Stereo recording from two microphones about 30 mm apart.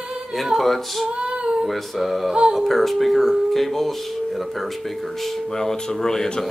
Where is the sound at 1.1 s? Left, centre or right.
Right.